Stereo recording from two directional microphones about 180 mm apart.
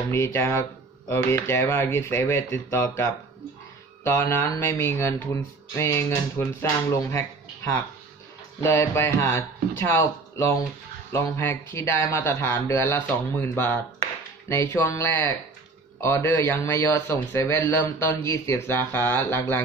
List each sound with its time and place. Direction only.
0.1 s speech: 15° left (ahead or behind)
4.0 s speech: 15° left (ahead or behind)